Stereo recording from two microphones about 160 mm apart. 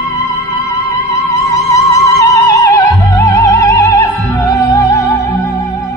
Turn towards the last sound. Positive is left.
turn(degrees=20)  # may be behind; listen again after turning